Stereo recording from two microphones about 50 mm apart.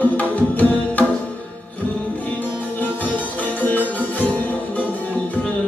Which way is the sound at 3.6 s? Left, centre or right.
Left.